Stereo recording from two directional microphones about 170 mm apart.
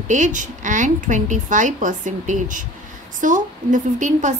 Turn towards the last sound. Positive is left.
turn(degrees=-50)  # may be behind; listen again after turning